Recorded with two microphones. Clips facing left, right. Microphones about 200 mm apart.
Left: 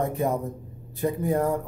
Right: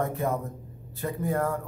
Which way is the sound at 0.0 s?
15° left (ahead or behind).